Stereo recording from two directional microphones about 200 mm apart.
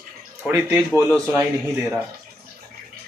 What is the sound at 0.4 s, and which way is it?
A man's voice, 5° right (ahead or behind).